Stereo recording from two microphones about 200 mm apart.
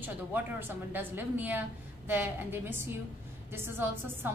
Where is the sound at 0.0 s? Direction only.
10° right (ahead or behind).